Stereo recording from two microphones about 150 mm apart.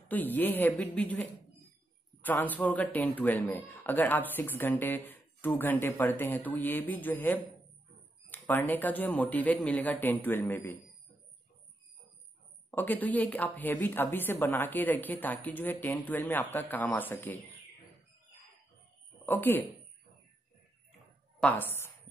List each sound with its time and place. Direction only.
0.1 s speech: 10° left (ahead or behind)
2.2 s speech: 10° left (ahead or behind)
12.7 s speech: 10° left (ahead or behind)
19.2 s speech: 15° left (ahead or behind)
21.4 s a woman's voice: 10° left (ahead or behind)